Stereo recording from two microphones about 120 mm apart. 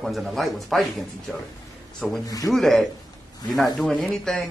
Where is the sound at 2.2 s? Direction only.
30° left (ahead or behind).